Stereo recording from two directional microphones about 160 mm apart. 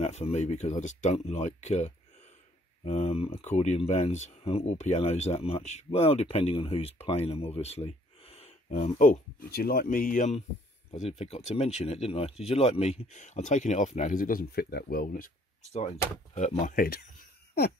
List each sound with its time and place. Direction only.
0.0 s speech: 40° left (ahead or behind)
9.0 s speech: 60° left (ahead or behind)
10.9 s speech: 40° left (ahead or behind); by 15.3 s 65° left (ahead or behind)
16.3 s speech: 50° left (ahead or behind); by 17.0 s 65° left (ahead or behind)